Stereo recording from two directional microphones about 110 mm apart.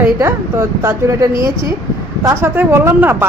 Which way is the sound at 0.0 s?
20° right (ahead or behind).